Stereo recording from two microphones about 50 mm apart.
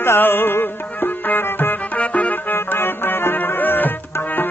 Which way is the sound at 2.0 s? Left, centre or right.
Left.